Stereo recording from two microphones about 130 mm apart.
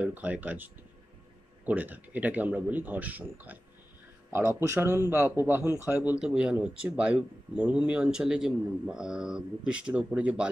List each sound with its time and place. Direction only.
0.0 s speech: 10° right (ahead or behind)
1.7 s speech: 10° right (ahead or behind)